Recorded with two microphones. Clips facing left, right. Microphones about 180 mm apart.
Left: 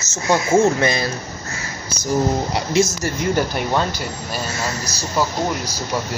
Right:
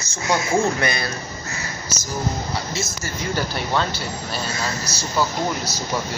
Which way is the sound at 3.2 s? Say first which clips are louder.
Left 5 dB; 55° left (ahead or behind).